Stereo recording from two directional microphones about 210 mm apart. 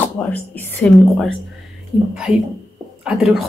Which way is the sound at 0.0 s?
10° left (ahead or behind).